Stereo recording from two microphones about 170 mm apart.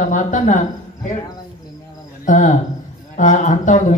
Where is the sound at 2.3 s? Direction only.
45° left (ahead or behind).